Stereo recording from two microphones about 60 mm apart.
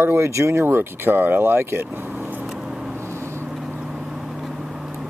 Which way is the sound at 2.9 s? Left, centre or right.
Right.